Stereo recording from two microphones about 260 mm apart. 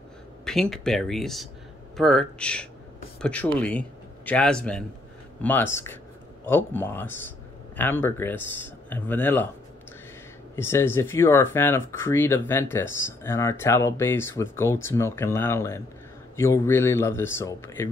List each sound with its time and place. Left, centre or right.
0.5 s speech: centre
10.5 s speech: centre